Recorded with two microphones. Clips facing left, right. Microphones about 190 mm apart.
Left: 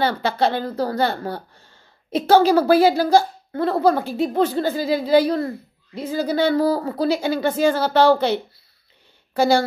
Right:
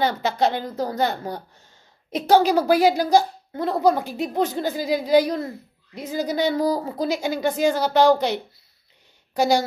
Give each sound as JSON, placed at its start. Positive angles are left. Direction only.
{"t": 0.0, "sound": "a woman's voice", "side_deg": -15}